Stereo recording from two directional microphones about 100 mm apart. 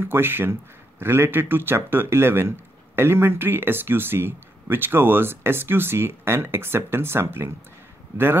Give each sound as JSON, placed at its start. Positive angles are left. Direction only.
{"t": 0.0, "sound": "speech", "side_deg": -20}